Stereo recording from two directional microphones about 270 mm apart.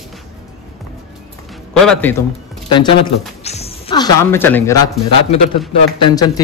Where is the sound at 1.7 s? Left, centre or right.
Centre.